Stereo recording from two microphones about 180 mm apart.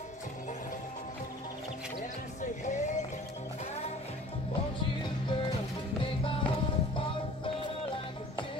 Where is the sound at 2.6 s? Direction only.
40° left (ahead or behind).